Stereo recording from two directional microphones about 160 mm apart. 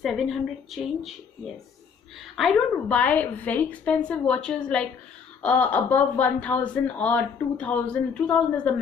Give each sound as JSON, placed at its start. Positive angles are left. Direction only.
{"t": 0.0, "sound": "a woman's voice", "side_deg": 0}